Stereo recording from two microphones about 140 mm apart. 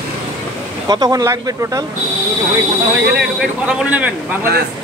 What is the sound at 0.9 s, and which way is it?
Speech, 25° right (ahead or behind).